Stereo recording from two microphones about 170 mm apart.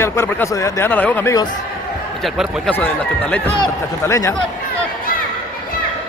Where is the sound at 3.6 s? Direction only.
20° left (ahead or behind).